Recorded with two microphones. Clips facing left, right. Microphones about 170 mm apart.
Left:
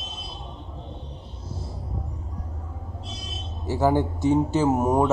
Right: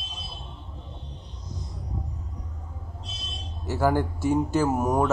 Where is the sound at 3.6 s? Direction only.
20° left (ahead or behind).